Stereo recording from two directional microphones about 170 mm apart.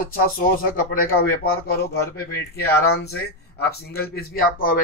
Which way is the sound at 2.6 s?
70° left (ahead or behind).